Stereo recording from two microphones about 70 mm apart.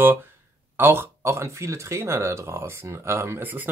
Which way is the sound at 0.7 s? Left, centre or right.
Right.